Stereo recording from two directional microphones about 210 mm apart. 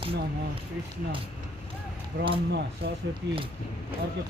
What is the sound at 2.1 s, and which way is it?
Speech, 50° right (ahead or behind).